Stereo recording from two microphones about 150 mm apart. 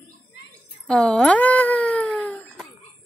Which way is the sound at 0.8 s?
5° left (ahead or behind).